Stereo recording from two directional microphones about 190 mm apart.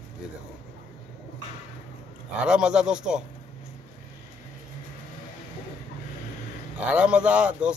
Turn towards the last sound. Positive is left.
turn(degrees=-5)  # may be behind; listen again after turning